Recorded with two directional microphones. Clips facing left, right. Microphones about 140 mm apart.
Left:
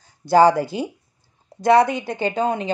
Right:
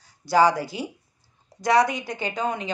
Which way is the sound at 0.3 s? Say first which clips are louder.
Left 5 dB; 55° left (ahead or behind).